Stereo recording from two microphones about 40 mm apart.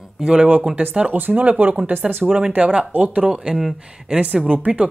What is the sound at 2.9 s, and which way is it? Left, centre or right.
Speech, right.